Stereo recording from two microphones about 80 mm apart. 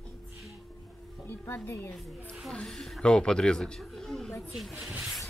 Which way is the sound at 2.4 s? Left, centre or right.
Centre.